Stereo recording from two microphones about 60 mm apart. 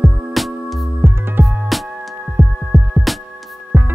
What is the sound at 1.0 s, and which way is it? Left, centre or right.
Music, right.